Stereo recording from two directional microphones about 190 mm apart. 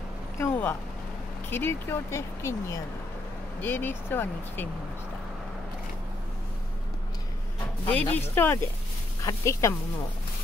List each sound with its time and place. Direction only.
0.4 s speech: 10° left (ahead or behind)
7.8 s speech: 10° left (ahead or behind)